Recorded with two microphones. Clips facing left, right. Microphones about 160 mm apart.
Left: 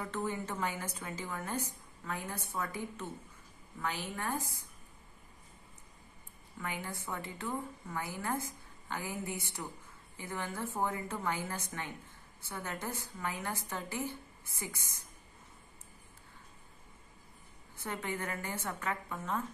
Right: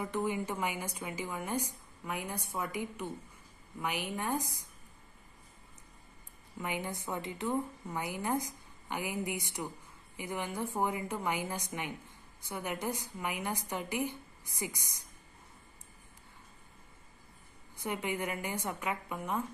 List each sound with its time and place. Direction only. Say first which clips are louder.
0.0 s a woman's voice: right 3 dB; 15° right (ahead or behind)
6.6 s a woman's voice: right 3 dB; 20° right (ahead or behind)
17.7 s a woman's voice: right 3 dB; 15° right (ahead or behind)